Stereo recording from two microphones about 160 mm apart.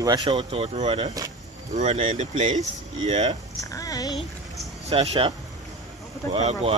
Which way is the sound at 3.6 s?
20° left (ahead or behind).